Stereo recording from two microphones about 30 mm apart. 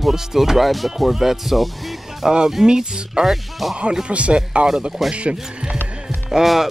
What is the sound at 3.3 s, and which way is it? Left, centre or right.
Speech, centre.